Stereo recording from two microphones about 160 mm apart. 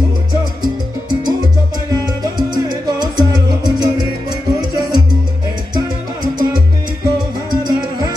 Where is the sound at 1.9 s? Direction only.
25° right (ahead or behind).